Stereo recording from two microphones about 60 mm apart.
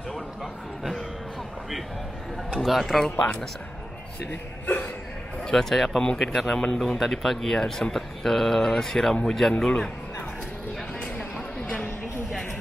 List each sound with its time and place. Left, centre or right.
0.1 s speech: centre
2.6 s speech: centre
3.2 s speech: centre
4.3 s speech: left
5.5 s speech: centre